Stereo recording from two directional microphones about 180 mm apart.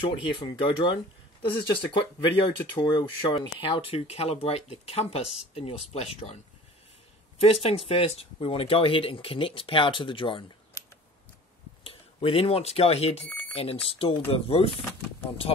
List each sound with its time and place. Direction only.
0.1 s speech: 25° left (ahead or behind)
7.6 s speech: 35° left (ahead or behind)
11.8 s speech: 30° left (ahead or behind)